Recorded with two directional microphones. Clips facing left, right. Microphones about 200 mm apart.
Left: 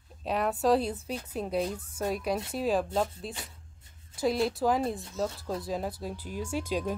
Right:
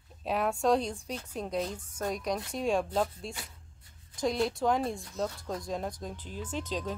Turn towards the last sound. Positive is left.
turn(degrees=10)  # may be behind; listen again after turning